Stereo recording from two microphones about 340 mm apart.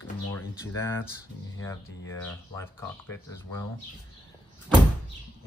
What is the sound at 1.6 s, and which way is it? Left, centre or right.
Speech, centre.